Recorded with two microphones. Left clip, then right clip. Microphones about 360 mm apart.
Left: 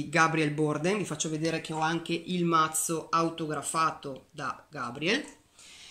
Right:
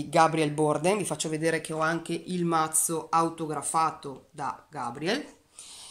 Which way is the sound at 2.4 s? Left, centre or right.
Right.